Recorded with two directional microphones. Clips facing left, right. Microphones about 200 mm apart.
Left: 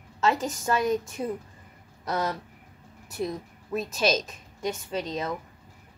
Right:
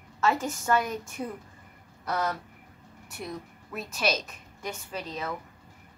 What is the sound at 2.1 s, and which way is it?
Speech, 25° left (ahead or behind).